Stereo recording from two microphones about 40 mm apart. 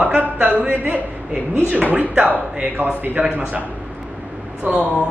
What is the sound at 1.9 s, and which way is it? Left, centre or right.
Speech, right.